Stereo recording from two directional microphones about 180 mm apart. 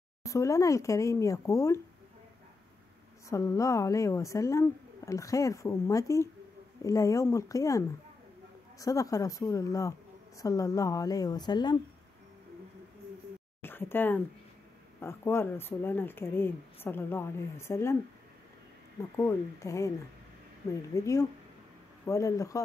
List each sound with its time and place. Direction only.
0.2 s a woman's voice: 15° left (ahead or behind)
3.3 s a woman's voice: 15° left (ahead or behind)
13.6 s a woman's voice: 10° left (ahead or behind)
19.1 s a woman's voice: 15° left (ahead or behind)
20.9 s a woman's voice: 20° left (ahead or behind)